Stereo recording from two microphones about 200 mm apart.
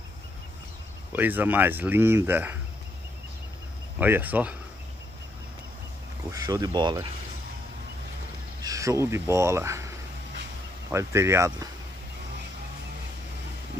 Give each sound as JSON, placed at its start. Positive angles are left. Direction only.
{"t": 1.1, "sound": "speech", "side_deg": -10}
{"t": 4.0, "sound": "speech", "side_deg": -10}
{"t": 6.3, "sound": "speech", "side_deg": -20}
{"t": 8.6, "sound": "speech", "side_deg": -15}